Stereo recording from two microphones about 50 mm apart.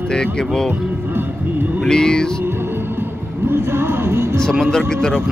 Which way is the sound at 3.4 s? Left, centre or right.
Right.